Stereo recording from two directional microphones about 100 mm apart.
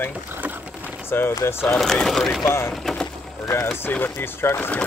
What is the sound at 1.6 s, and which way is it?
Speech, 5° left (ahead or behind).